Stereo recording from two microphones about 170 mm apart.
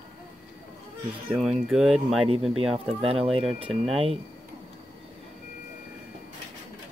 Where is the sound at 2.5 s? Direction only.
35° right (ahead or behind).